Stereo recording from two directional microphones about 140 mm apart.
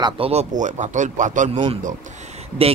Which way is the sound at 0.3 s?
55° right (ahead or behind).